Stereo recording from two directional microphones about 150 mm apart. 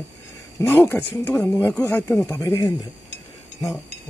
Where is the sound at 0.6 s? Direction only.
15° left (ahead or behind).